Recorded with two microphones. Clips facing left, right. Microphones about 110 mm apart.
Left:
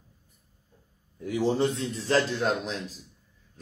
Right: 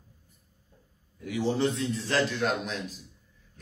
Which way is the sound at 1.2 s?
35° left (ahead or behind).